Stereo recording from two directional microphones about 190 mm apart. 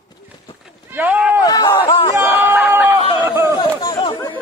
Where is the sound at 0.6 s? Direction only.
10° right (ahead or behind).